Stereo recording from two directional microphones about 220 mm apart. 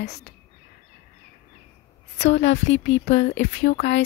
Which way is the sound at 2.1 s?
55° left (ahead or behind).